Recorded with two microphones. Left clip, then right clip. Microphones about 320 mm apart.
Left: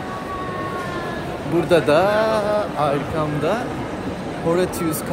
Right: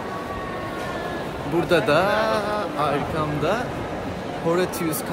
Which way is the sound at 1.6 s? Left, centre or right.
Centre.